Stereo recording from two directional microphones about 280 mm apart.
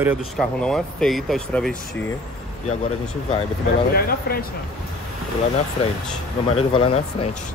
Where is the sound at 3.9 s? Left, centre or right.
Left.